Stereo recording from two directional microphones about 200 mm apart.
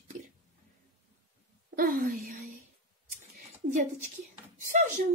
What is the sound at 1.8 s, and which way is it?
Speech, 45° right (ahead or behind).